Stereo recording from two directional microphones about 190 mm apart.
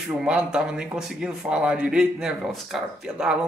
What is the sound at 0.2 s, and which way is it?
Speech, 5° right (ahead or behind).